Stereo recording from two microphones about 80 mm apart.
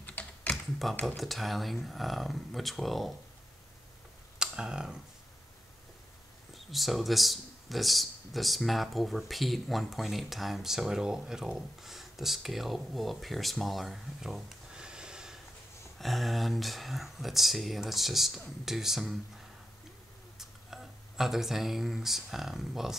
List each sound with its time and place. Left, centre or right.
0.0 s typing: centre
1.0 s speech: centre
4.4 s speech: centre
6.5 s speech: centre
20.3 s speech: centre